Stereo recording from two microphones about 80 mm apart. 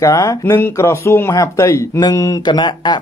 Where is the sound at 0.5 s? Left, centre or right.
Left.